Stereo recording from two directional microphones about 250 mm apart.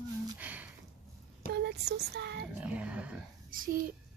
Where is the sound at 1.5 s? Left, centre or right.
Right.